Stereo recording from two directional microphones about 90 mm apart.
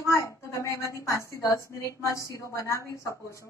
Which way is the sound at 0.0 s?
35° left (ahead or behind).